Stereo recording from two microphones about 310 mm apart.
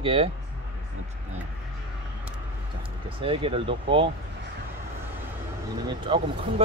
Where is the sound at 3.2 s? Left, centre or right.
Centre.